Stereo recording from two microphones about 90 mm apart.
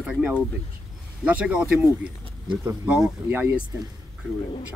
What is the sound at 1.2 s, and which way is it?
Speech, 15° right (ahead or behind).